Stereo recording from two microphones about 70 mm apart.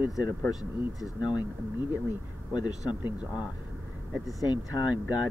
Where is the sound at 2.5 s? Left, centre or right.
Left.